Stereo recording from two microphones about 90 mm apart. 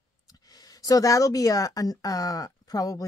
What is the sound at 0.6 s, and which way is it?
Speech, 45° left (ahead or behind).